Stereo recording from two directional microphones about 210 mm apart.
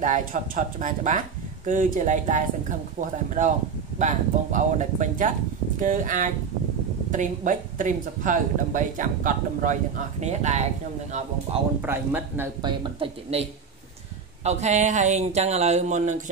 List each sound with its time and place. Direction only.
0.0 s speech: 35° right (ahead or behind)
11.8 s speech: 10° right (ahead or behind)
12.6 s speech: 25° right (ahead or behind)